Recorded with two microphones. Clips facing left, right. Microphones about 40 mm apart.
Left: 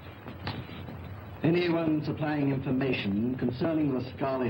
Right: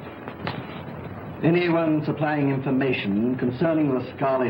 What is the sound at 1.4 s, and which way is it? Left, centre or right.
A man's voice, right.